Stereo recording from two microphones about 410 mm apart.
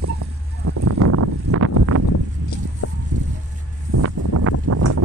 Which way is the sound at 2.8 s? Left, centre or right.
Left.